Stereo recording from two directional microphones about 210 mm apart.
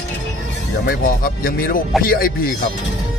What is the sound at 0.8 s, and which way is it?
Speech, 45° left (ahead or behind).